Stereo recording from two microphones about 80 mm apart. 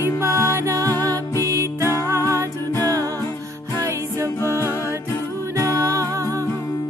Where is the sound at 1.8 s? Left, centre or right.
Left.